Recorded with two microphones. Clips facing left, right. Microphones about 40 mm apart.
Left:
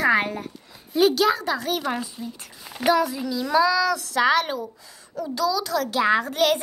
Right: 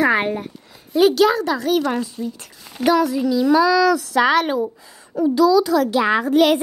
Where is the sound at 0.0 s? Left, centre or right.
Centre.